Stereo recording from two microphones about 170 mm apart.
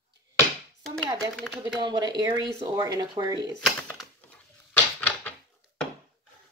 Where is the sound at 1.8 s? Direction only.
25° right (ahead or behind).